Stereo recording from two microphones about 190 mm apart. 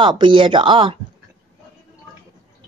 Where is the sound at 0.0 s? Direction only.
25° right (ahead or behind).